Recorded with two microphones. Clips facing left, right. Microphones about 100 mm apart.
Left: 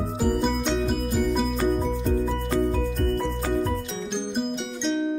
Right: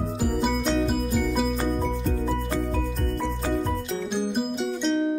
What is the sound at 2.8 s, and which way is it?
Music, centre (ahead or behind).